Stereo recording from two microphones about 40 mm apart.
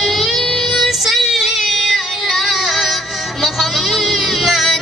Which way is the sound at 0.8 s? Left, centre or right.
Centre.